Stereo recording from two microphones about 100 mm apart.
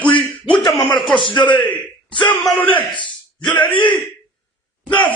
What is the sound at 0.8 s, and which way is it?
Speech, 55° left (ahead or behind).